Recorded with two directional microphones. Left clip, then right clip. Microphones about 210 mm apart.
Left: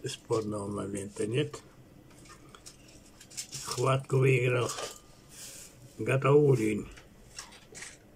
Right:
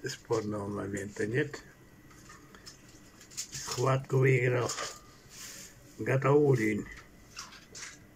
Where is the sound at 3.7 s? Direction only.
10° left (ahead or behind).